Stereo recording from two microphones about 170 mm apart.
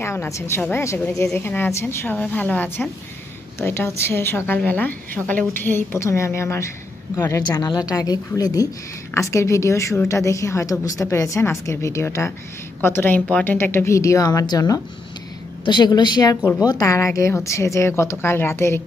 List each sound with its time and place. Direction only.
0.0 s a woman's voice: 15° left (ahead or behind)